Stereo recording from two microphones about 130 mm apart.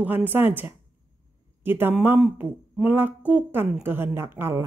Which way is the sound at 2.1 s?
5° right (ahead or behind).